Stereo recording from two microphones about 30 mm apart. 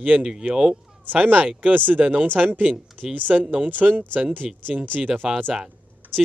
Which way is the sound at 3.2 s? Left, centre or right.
Right.